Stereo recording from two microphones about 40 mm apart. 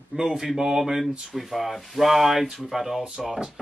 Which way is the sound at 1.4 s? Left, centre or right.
Centre.